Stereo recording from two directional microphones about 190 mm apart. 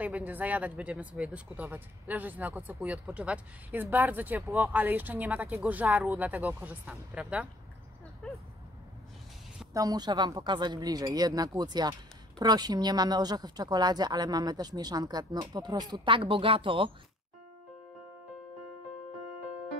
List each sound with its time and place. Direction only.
0.0 s speech: 10° right (ahead or behind)
8.2 s speech: 5° left (ahead or behind)
9.8 s speech: 20° right (ahead or behind)